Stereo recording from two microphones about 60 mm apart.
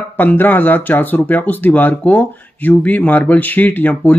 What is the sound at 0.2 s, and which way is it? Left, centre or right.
Speech, left.